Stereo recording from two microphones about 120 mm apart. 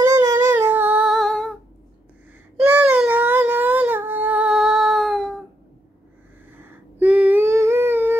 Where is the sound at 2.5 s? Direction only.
15° right (ahead or behind).